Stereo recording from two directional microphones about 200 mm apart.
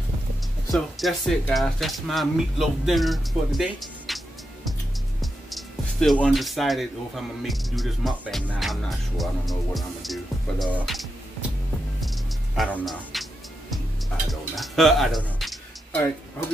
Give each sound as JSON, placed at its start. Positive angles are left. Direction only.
{"t": 0.7, "sound": "speech", "side_deg": 0}
{"t": 5.2, "sound": "speech", "side_deg": 0}
{"t": 12.0, "sound": "music", "side_deg": 0}